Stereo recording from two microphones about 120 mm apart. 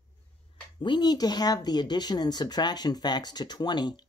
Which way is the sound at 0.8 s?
35° left (ahead or behind).